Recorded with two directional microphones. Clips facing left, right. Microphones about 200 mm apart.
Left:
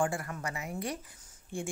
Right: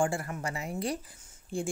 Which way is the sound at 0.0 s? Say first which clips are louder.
Right 2 dB; 25° right (ahead or behind).